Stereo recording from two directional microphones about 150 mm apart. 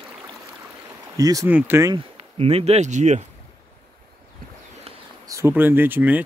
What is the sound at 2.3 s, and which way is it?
Speech, 40° right (ahead or behind).